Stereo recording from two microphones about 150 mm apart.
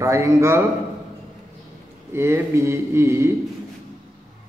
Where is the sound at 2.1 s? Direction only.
15° right (ahead or behind).